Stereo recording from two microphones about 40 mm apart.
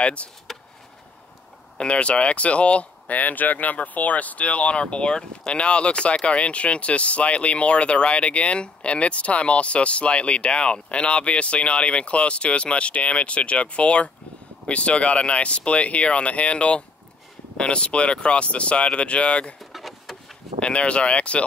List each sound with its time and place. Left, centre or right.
0.0 s speech: left
0.5 s a sound: centre
1.8 s speech: left
19.6 s vehicle: centre
20.5 s speech: left